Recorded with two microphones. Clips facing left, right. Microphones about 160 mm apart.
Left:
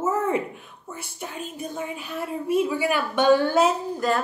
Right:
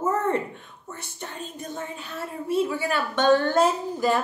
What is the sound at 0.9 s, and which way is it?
A woman's voice, 10° left (ahead or behind).